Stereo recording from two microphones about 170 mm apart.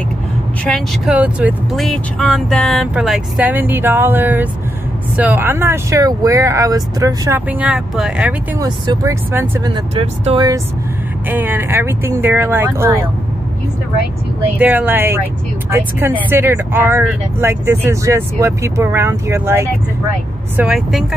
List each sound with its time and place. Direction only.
0.7 s speech: centre (ahead or behind)
1.9 s speech: 5° left (ahead or behind)
8.5 s speech: 20° right (ahead or behind)
9.9 s speech: 35° right (ahead or behind)
11.2 s speech: 10° right (ahead or behind)
14.6 s speech: 10° right (ahead or behind)
20.5 s speech: 5° right (ahead or behind)